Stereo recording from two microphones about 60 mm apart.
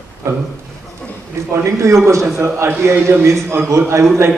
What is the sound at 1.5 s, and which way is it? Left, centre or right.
A man's voice, right.